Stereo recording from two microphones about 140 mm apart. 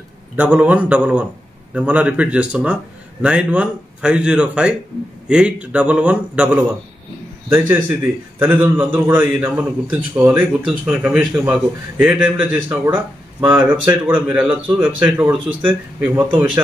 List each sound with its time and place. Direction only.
0.4 s a man's voice: 10° right (ahead or behind)